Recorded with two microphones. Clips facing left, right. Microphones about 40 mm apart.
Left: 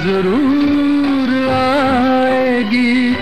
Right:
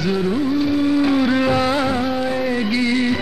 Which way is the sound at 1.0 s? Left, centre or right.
Centre.